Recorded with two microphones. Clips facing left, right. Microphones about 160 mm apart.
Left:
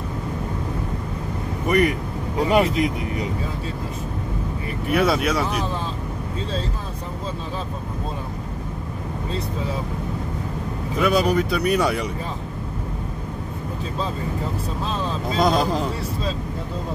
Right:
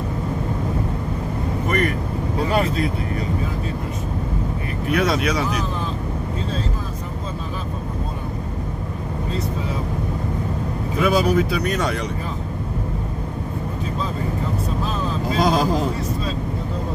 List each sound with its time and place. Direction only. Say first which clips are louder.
1.7 s speech: left 4 dB; 15° left (ahead or behind)
4.9 s speech: left 1 dB; 5° left (ahead or behind)
11.0 s speech: right 1 dB; centre (ahead or behind)
15.3 s speech: even; centre (ahead or behind)